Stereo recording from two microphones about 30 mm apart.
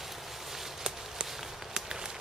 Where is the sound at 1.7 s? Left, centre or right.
Right.